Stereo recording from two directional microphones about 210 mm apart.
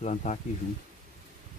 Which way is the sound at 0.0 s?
35° left (ahead or behind).